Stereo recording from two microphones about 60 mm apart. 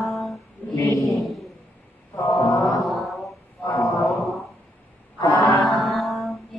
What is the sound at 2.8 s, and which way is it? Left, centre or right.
Mantra, centre.